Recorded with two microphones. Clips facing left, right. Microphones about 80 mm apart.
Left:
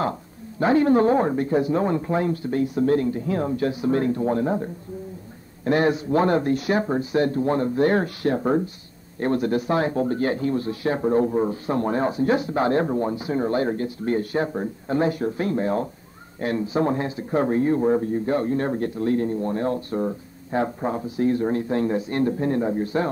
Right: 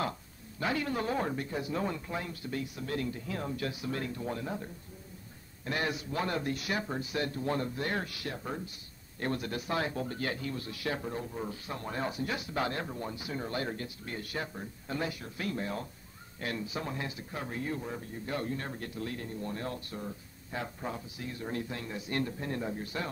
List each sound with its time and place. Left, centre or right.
0.6 s a man's voice: left
9.2 s a man's voice: left